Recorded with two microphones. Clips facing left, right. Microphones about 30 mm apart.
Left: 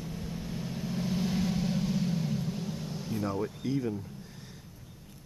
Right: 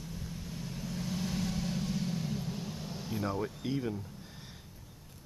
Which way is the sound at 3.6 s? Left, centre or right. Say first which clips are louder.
Left 3 dB; centre.